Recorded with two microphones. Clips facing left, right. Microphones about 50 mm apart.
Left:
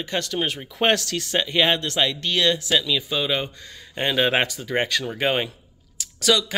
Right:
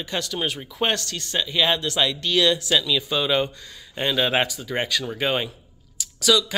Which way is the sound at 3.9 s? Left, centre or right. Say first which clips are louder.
Left 1 dB; left.